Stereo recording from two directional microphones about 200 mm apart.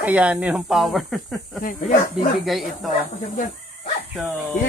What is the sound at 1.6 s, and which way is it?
Speech, 45° left (ahead or behind).